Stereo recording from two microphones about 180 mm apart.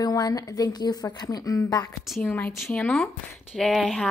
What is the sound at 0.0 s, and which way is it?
A woman's voice, 20° left (ahead or behind).